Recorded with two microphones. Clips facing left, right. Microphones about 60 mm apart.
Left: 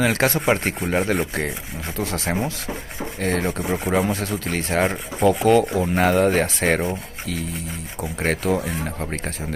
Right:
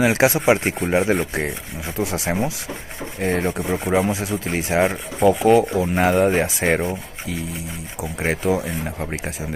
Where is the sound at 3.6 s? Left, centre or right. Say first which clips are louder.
Right 1 dB; centre.